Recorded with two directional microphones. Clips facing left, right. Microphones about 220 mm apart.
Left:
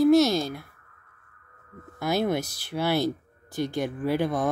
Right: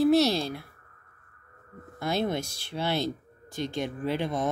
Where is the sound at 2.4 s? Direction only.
25° right (ahead or behind).